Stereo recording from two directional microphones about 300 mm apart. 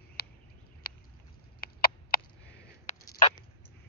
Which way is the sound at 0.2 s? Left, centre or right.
Left.